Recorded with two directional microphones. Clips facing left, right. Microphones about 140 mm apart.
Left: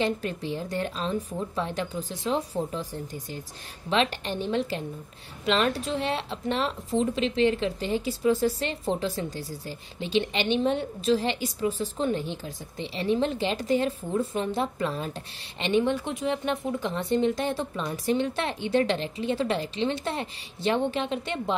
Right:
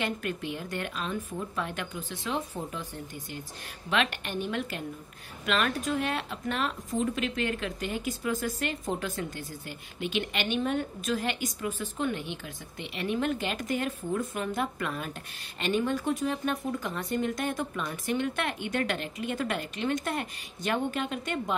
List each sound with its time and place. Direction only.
0.0 s speech: 35° left (ahead or behind)